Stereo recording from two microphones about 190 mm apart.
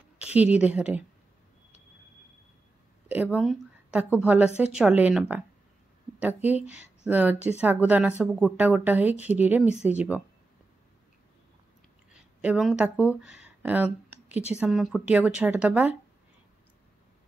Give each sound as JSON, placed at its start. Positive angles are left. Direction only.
{"t": 0.2, "sound": "a woman's voice", "side_deg": -5}
{"t": 3.1, "sound": "speech", "side_deg": -10}
{"t": 12.1, "sound": "speech", "side_deg": -5}